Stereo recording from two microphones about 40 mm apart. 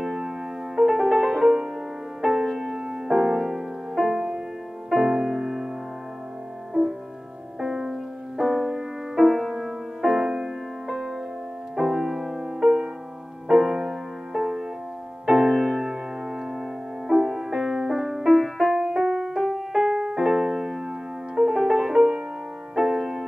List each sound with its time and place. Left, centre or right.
0.0 s music: centre
7.6 s music: centre
12.6 s music: right
13.5 s music: centre
19.3 s music: centre